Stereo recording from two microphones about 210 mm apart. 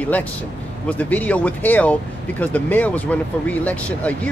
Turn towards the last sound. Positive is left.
turn(degrees=5)  # may be behind; listen again after turning